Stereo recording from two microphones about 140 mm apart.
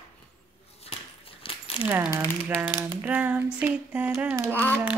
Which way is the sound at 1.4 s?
40° left (ahead or behind).